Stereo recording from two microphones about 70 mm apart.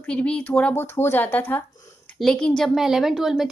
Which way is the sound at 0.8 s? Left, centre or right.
Left.